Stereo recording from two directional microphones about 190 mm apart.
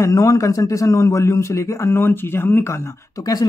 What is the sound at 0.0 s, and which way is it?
A man's voice, 15° left (ahead or behind).